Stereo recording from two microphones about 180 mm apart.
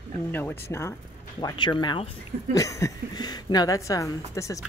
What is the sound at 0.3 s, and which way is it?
Speech, 10° left (ahead or behind).